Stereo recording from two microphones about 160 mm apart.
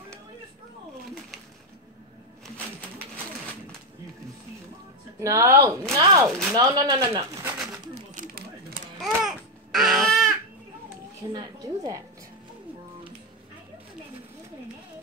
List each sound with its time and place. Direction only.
5.2 s speech: 15° right (ahead or behind)
7.5 s pigeon: 5° right (ahead or behind)
7.9 s a sound: 50° right (ahead or behind)
9.0 s babbling: centre (ahead or behind)
11.3 s speech: 25° right (ahead or behind)